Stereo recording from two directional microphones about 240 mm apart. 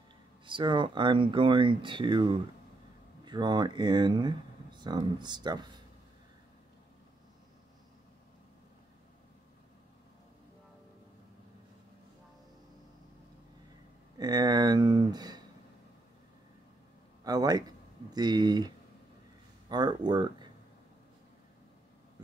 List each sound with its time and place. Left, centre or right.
0.5 s speech: right
14.1 s speech: centre
17.2 s speech: centre
19.7 s speech: centre